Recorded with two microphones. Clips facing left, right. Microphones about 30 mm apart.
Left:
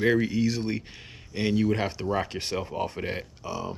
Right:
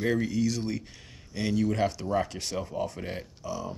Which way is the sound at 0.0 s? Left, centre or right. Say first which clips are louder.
Left 3 dB; left.